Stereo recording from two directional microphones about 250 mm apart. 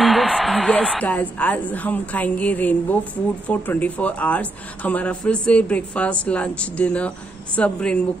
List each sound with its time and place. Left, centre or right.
0.0 s a woman's voice: centre